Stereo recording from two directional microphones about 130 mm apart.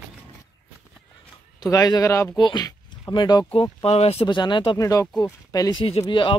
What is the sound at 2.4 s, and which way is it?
Speech, 35° left (ahead or behind).